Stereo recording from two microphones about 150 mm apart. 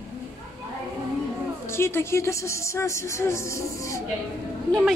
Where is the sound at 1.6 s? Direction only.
15° left (ahead or behind).